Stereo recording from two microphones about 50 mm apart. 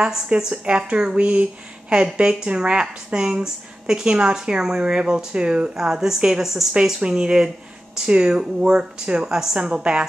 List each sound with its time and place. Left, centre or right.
0.0 s a woman's voice: centre